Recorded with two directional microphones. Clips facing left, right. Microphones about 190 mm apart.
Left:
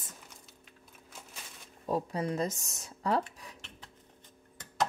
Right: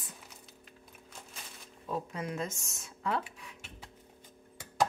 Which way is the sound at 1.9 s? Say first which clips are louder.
Left 5 dB; 35° left (ahead or behind).